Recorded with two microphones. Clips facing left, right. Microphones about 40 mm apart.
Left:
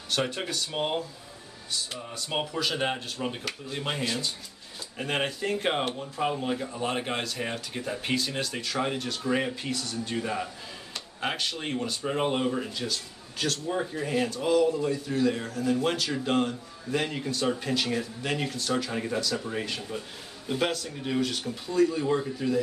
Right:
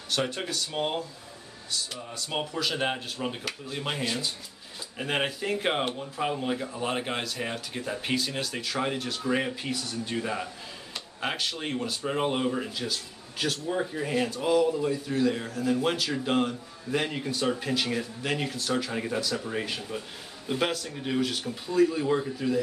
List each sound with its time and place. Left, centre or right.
0.3 s speech: centre
1.9 s speech: centre
2.5 s speech: centre